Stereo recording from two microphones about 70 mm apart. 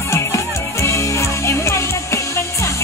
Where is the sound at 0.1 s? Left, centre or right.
Left.